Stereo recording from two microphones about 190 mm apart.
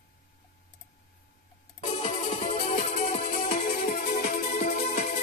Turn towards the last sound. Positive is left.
turn(degrees=45)  # may be behind; listen again after turning